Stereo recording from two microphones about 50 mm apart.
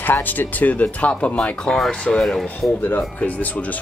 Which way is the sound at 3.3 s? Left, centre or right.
Left.